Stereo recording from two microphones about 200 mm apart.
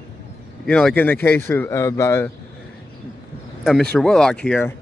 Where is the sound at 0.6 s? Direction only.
5° left (ahead or behind).